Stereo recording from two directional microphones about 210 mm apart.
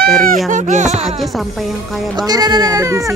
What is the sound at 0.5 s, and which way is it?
Speech, 35° right (ahead or behind).